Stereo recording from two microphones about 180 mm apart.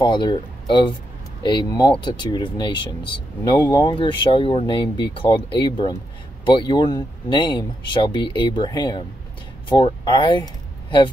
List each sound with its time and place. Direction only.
0.0 s speech: 25° left (ahead or behind)